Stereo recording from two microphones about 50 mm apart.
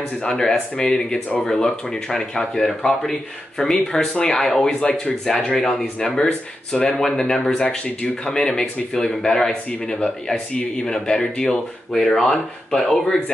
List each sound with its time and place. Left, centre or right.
0.2 s speech: centre
4.5 s speech: centre